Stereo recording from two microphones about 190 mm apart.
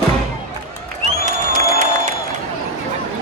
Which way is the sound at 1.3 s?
40° right (ahead or behind).